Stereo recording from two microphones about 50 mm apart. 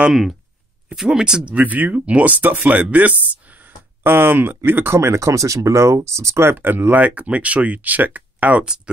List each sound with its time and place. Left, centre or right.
0.1 s speech: centre
0.9 s speech: centre
1.4 s speech: right
4.0 s speech: right
4.9 s speech: right
6.5 s speech: right
8.6 s speech: centre